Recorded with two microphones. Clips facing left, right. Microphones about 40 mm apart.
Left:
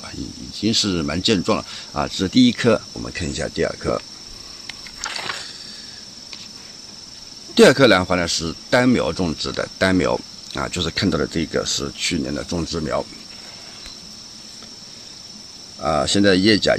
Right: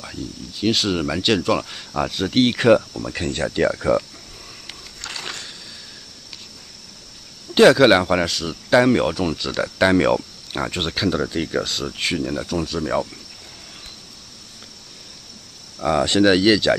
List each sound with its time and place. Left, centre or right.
0.0 s speech: centre
5.1 s a sound: left
7.5 s speech: centre
15.8 s speech: centre